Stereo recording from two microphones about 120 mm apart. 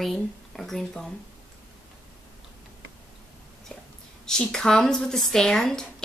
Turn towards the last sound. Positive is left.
turn(degrees=5)  # may be behind; listen again after turning